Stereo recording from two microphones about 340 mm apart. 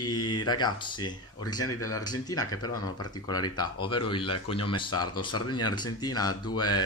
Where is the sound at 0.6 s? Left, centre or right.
Centre.